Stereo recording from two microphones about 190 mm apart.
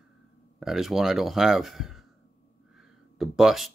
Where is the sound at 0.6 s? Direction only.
Centre (ahead or behind).